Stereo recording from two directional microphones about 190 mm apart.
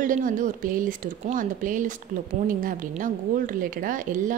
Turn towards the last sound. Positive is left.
turn(degrees=-45)  # may be behind; listen again after turning